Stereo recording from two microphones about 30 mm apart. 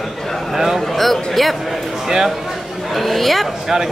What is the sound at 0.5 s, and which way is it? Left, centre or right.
Speech, centre.